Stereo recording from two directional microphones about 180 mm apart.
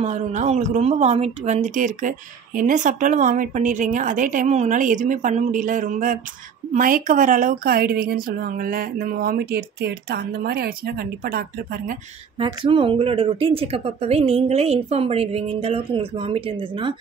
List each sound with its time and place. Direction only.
0.0 s speech: 40° right (ahead or behind)
12.4 s a woman's voice: 30° right (ahead or behind)